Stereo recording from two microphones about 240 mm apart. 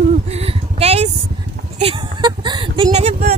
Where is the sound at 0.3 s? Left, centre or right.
Right.